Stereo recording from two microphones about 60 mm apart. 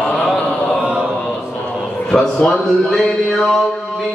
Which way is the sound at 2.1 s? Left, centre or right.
Centre.